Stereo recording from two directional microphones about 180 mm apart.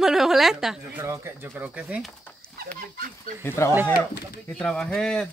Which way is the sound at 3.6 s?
15° left (ahead or behind).